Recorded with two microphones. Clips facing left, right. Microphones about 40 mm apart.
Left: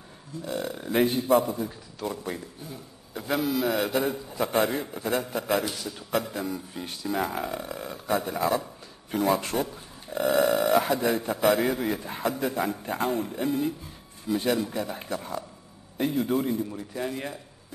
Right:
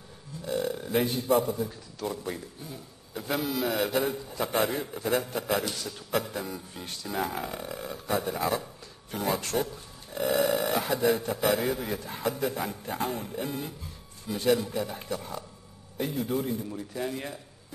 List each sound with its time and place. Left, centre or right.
0.5 s a man's voice: centre